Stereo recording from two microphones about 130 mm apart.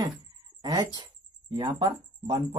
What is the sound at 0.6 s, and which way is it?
Speech, 30° right (ahead or behind).